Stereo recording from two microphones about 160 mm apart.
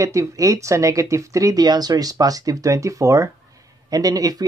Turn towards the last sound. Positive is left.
turn(degrees=-25)  # may be behind; listen again after turning